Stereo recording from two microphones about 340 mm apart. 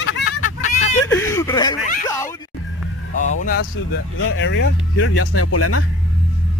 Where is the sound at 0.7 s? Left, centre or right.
Centre.